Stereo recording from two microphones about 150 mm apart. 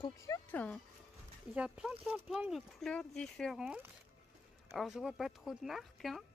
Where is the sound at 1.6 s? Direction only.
5° right (ahead or behind).